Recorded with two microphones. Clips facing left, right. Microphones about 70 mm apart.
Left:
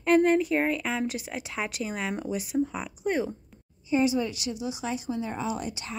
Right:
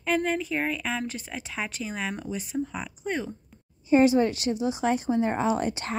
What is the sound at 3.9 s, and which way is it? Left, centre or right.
A woman's voice, right.